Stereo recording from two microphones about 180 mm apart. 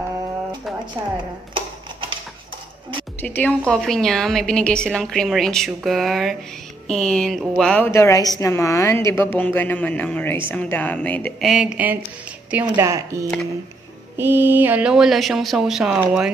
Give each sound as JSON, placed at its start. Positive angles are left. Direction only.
{"t": 1.5, "sound": "typewriter", "side_deg": -30}
{"t": 3.2, "sound": "a woman's voice", "side_deg": 10}
{"t": 11.5, "sound": "a woman's voice", "side_deg": -5}